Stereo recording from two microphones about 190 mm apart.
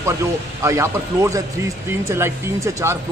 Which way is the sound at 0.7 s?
15° right (ahead or behind).